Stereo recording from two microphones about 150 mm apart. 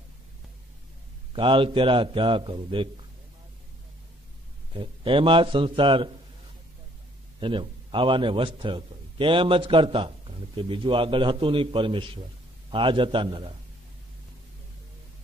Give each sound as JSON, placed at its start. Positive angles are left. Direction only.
{"t": 1.3, "sound": "a man's voice", "side_deg": -35}
{"t": 4.7, "sound": "a man's voice", "side_deg": -35}
{"t": 7.3, "sound": "a man's voice", "side_deg": -35}